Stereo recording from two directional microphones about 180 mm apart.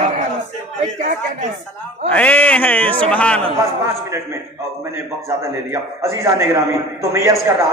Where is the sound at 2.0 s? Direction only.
10° left (ahead or behind).